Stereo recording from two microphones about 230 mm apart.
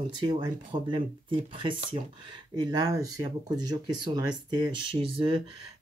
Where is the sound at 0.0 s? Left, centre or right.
Right.